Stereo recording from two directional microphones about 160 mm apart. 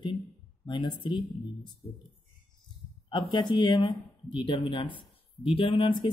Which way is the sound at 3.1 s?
30° left (ahead or behind).